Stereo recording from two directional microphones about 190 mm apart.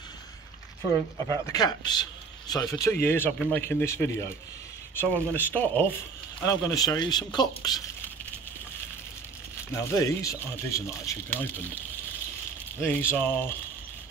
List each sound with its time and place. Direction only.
1.4 s a man's voice: 20° left (ahead or behind)
9.7 s a man's voice: 15° left (ahead or behind)
13.1 s a man's voice: 10° left (ahead or behind)